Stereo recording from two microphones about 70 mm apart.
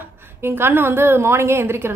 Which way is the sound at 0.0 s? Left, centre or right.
Right.